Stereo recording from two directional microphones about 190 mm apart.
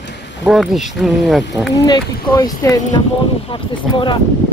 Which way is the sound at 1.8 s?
20° left (ahead or behind).